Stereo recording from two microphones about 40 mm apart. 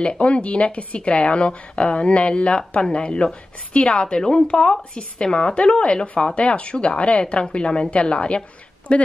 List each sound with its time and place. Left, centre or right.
0.0 s a woman's voice: left